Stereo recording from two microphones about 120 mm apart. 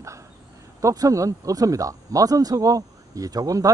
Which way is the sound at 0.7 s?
30° right (ahead or behind).